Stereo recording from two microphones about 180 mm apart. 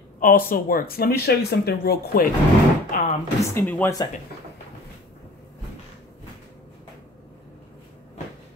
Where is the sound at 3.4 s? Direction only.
15° left (ahead or behind).